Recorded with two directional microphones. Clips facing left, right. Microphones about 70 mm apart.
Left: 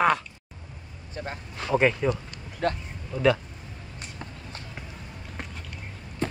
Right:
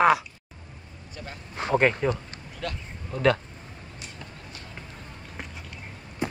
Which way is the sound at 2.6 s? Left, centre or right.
Left.